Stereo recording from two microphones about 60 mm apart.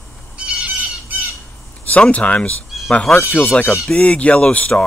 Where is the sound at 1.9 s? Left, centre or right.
Left.